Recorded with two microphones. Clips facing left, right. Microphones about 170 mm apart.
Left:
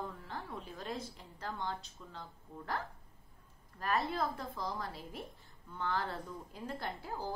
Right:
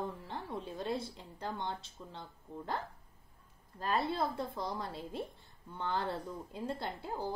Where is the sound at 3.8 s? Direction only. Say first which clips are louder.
Right 1 dB; 25° right (ahead or behind).